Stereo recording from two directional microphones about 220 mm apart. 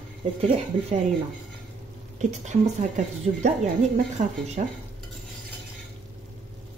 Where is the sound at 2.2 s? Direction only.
30° right (ahead or behind).